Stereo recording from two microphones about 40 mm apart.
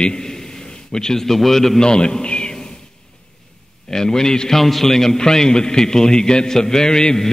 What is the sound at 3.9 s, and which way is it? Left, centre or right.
A man's voice, centre.